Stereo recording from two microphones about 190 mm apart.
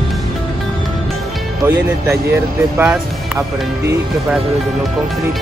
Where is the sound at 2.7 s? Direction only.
10° right (ahead or behind).